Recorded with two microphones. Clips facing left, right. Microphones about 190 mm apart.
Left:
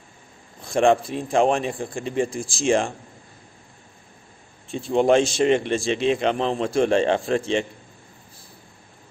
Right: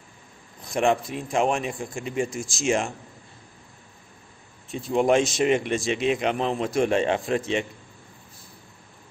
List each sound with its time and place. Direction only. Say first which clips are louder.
0.6 s speech: left 4 dB; 30° left (ahead or behind)
4.6 s speech: left 3 dB; 30° left (ahead or behind)